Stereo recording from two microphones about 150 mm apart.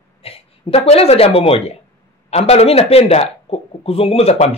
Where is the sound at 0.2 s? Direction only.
40° left (ahead or behind).